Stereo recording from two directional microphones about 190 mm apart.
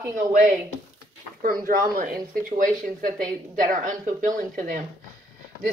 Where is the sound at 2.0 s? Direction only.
45° right (ahead or behind).